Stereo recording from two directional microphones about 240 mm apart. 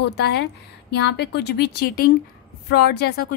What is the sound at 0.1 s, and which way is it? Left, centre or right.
A woman's voice, left.